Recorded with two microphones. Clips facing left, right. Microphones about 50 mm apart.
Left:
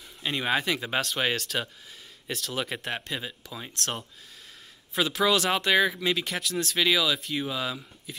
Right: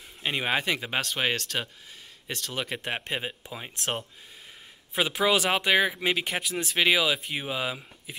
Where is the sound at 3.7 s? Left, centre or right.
Centre.